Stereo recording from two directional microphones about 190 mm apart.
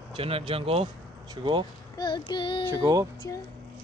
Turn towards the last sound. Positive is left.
turn(degrees=-20)  # may be behind; listen again after turning